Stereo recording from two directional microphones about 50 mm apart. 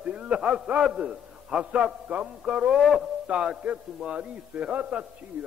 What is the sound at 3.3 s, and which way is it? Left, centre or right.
A man's voice, centre.